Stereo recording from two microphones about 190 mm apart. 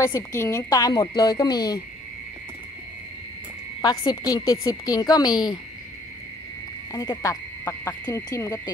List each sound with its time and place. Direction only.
0.0 s a woman's voice: 15° left (ahead or behind)
3.8 s a woman's voice: 20° left (ahead or behind)
6.9 s speech: 20° left (ahead or behind)